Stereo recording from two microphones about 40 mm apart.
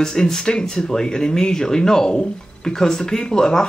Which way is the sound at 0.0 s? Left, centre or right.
Centre.